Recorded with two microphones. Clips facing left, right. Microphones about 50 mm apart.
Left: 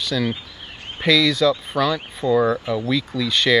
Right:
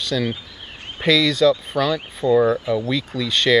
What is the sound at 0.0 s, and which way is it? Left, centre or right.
Speech, centre.